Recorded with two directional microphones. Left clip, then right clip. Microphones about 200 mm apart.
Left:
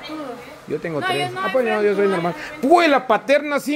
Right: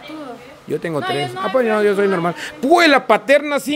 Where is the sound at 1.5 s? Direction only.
25° right (ahead or behind).